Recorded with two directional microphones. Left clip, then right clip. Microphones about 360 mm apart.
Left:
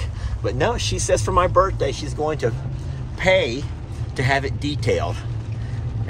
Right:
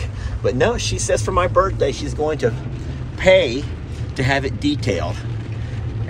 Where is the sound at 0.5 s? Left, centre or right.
Centre.